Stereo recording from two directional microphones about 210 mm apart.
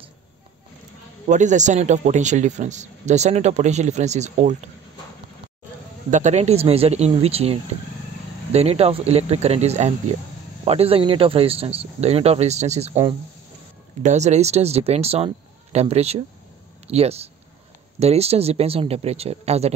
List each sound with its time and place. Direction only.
1.2 s a man's voice: 35° right (ahead or behind)
6.0 s speech: 35° right (ahead or behind)
14.0 s a man's voice: 35° right (ahead or behind)